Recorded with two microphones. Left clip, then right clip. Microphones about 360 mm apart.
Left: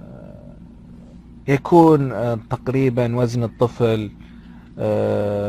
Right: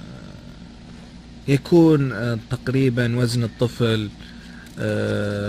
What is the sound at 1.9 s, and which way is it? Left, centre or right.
Speech, centre.